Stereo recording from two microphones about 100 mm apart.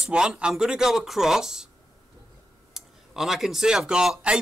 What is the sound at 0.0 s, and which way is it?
Speech, 5° right (ahead or behind).